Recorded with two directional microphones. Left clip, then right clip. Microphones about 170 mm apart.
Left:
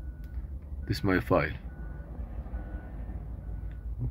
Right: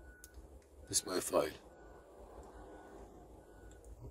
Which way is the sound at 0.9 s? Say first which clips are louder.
Left 8 dB; 35° right (ahead or behind).